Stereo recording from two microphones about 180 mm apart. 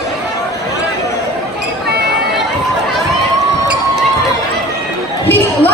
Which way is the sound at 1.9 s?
65° right (ahead or behind).